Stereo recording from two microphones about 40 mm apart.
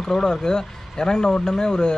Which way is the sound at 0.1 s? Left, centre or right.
Centre.